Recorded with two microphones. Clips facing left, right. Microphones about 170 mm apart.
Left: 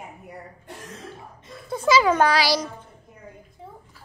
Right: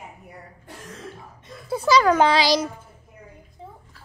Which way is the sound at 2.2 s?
20° right (ahead or behind).